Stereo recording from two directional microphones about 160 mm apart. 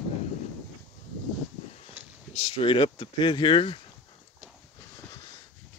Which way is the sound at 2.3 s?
35° left (ahead or behind).